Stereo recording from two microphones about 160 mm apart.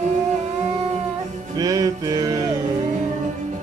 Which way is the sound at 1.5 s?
20° right (ahead or behind).